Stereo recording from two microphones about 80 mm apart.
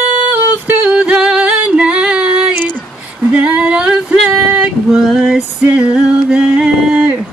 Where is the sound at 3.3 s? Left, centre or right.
Centre.